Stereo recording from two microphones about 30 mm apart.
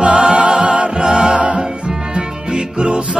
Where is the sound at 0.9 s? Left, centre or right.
Right.